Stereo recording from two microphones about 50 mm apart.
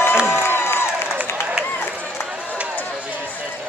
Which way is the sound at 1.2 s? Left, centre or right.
Right.